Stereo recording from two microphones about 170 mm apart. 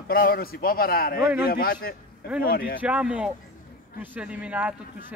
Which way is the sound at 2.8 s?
10° right (ahead or behind).